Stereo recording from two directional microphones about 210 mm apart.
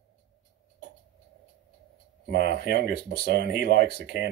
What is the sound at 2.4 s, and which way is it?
Speech, 50° right (ahead or behind).